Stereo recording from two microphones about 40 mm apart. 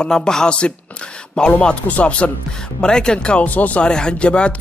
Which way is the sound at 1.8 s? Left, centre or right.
Left.